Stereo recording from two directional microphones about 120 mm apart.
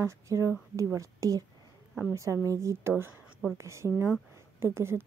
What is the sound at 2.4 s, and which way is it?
Speech, 25° right (ahead or behind).